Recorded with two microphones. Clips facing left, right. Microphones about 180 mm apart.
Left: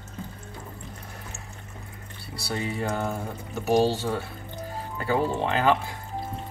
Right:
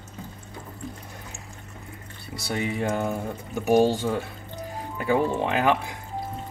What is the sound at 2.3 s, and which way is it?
Speech, 20° right (ahead or behind).